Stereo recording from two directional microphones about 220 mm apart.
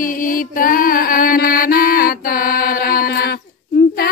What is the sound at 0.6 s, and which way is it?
Mantra, 40° left (ahead or behind).